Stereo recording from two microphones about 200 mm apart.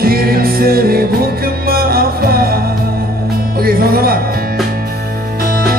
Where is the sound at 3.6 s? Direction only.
50° right (ahead or behind).